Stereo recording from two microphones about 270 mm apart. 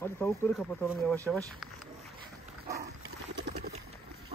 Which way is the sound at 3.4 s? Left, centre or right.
Right.